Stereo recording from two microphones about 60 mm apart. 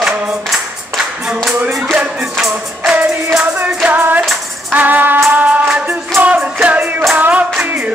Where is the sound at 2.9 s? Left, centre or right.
Right.